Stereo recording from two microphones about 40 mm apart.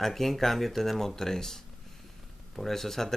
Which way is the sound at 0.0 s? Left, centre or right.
Centre.